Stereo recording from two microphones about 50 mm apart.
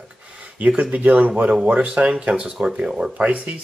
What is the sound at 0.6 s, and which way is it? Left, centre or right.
Speech, right.